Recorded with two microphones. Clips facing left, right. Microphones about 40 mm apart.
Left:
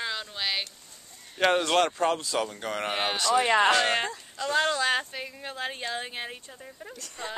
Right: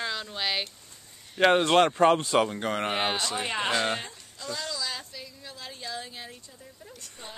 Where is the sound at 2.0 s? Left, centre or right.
Right.